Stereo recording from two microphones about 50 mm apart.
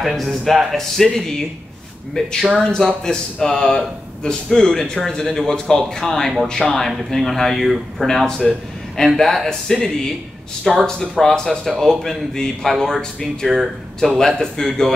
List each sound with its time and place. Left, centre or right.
0.0 s speech: centre
8.3 s a man's voice: centre
9.0 s speech: centre